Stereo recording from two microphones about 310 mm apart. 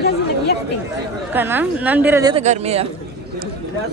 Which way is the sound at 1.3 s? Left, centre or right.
Centre.